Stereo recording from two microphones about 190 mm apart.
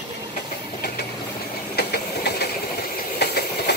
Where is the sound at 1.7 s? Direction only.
60° left (ahead or behind).